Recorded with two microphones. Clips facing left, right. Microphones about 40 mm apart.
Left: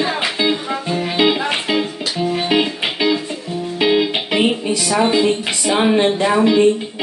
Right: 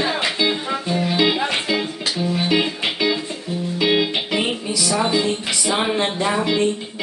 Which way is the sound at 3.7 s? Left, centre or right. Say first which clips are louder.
Left 3 dB; left.